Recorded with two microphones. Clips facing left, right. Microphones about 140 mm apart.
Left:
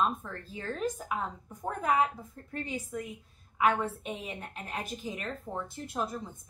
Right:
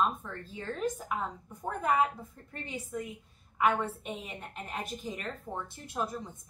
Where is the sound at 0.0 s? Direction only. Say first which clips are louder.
Even; centre (ahead or behind).